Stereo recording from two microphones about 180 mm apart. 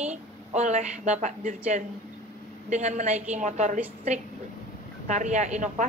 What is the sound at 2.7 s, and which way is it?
Speech, 40° right (ahead or behind).